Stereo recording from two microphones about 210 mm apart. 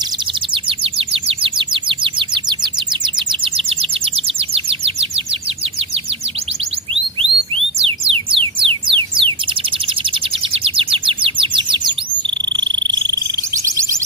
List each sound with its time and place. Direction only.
0.7 s bird: 25° right (ahead or behind)
7.2 s music: 25° right (ahead or behind)
10.5 s chirp: 25° right (ahead or behind)
12.7 s frog: 20° right (ahead or behind)